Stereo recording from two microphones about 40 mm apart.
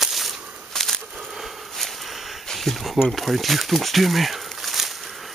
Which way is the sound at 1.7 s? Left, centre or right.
Centre.